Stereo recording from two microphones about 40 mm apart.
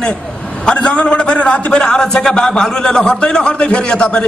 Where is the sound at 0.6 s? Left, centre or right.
Left.